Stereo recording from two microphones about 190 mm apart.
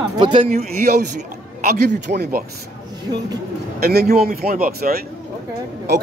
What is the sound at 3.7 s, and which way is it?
A man's voice, 55° right (ahead or behind).